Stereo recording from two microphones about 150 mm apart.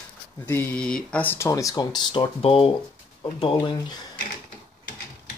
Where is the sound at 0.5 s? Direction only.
15° left (ahead or behind); by 4.0 s 30° left (ahead or behind).